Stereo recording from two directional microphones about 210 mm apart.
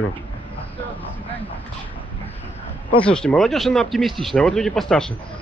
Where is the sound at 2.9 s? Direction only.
5° left (ahead or behind).